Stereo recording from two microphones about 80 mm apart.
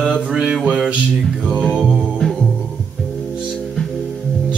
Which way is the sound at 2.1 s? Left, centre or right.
Centre.